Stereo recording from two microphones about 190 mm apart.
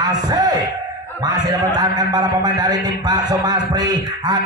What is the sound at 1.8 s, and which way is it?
A man's voice, 20° right (ahead or behind).